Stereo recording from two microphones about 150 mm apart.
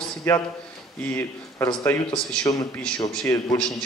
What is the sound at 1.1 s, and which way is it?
A man's voice, 15° left (ahead or behind).